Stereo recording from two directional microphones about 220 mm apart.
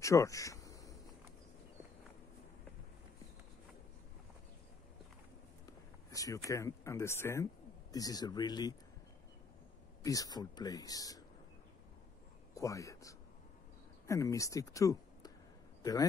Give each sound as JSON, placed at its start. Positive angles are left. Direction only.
{"t": 0.0, "sound": "a sound", "side_deg": 15}
{"t": 6.0, "sound": "speech", "side_deg": 15}
{"t": 10.0, "sound": "speech", "side_deg": 15}
{"t": 12.5, "sound": "speech", "side_deg": 15}